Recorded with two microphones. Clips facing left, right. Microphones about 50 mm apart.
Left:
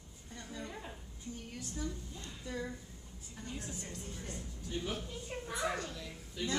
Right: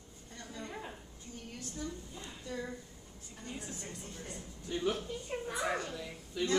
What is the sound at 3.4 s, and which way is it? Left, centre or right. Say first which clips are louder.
A woman's voice: right 1 dB; centre.